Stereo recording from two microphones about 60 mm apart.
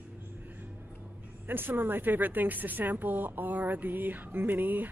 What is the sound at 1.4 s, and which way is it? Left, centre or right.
Speech, right.